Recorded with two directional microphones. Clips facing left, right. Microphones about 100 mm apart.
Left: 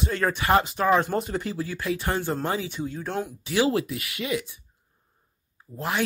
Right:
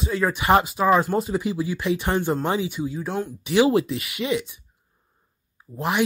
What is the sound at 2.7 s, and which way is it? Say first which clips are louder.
Speech: right 3 dB; 5° right (ahead or behind).